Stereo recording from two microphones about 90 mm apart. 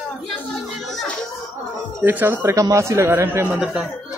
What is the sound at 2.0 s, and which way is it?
A man's voice, 20° right (ahead or behind).